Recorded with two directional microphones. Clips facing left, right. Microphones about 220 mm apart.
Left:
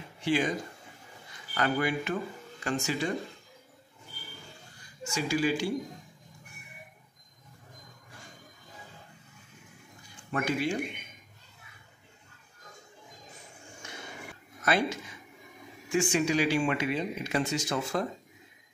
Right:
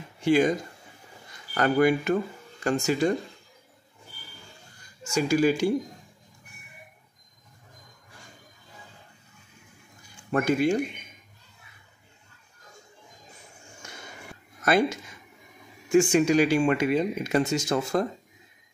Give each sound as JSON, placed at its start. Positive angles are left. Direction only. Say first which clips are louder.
{"t": 0.2, "sound": "speech", "louder": "right 7 dB", "side_deg": -45}
{"t": 5.1, "sound": "speech", "louder": "right 6 dB", "side_deg": -45}
{"t": 10.3, "sound": "speech", "louder": "right 7 dB", "side_deg": -45}
{"t": 13.8, "sound": "a sound", "louder": "left 1 dB", "side_deg": -45}
{"t": 15.9, "sound": "speech", "louder": "right 7 dB", "side_deg": -45}